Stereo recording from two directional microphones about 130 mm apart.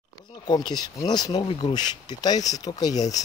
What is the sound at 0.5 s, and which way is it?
Speech, 30° left (ahead or behind).